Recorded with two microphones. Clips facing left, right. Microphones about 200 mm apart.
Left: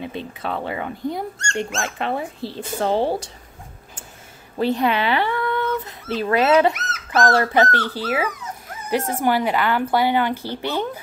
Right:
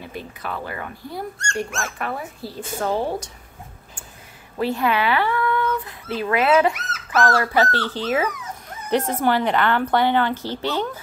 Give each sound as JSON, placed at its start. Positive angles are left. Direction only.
{"t": 0.0, "sound": "speech", "side_deg": 25}
{"t": 4.6, "sound": "a sound", "side_deg": 20}
{"t": 6.1, "sound": "speech", "side_deg": 35}
{"t": 7.5, "sound": "a woman's voice", "side_deg": 15}